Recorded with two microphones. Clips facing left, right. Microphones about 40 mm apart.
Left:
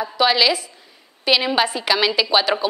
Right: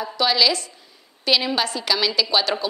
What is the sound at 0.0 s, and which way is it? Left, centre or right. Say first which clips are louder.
A woman's voice: left 3 dB; centre.